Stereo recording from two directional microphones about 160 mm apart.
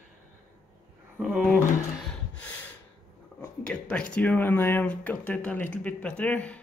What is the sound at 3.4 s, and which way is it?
Speech, 10° left (ahead or behind).